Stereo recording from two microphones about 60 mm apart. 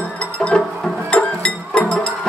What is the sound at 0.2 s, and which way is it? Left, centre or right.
Music, centre.